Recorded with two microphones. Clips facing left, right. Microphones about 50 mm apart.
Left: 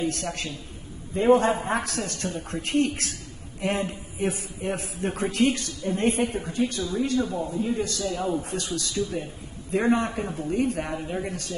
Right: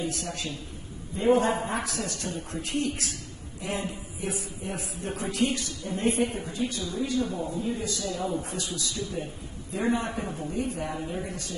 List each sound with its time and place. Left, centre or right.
0.0 s a man's voice: left
1.1 s a man's voice: left
1.7 s a man's voice: left
8.3 s a man's voice: left
8.5 s a man's voice: left
11.1 s a man's voice: left